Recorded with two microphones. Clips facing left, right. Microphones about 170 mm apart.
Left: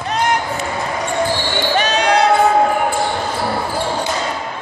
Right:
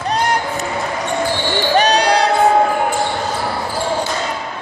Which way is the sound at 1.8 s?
35° right (ahead or behind).